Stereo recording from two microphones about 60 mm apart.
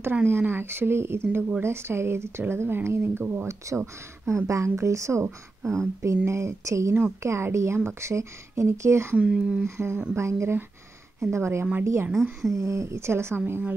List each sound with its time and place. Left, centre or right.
0.1 s speech: right
3.4 s speech: right
9.1 s speech: centre
9.8 s speech: right
12.1 s a woman's voice: centre
12.5 s speech: right